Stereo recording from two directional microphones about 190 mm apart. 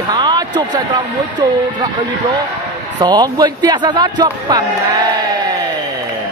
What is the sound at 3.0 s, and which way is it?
Speech, 20° right (ahead or behind).